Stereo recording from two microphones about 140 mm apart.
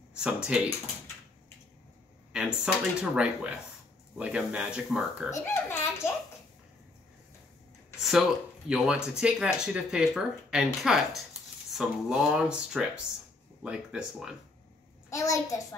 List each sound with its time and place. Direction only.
0.1 s speech: 5° right (ahead or behind)
2.3 s speech: 5° right (ahead or behind)
5.3 s baby laughter: 20° left (ahead or behind)
8.0 s speech: centre (ahead or behind)
15.0 s a child's voice: 25° left (ahead or behind)